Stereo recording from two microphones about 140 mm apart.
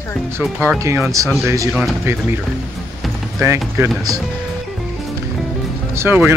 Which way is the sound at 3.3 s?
20° right (ahead or behind).